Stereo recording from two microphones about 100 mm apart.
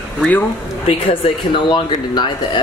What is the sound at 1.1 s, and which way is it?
Speech, 55° left (ahead or behind).